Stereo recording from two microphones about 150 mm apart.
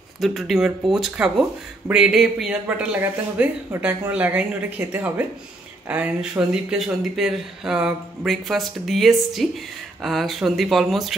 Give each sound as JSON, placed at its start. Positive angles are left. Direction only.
{"t": 0.2, "sound": "speech", "side_deg": 0}
{"t": 3.7, "sound": "speech", "side_deg": -20}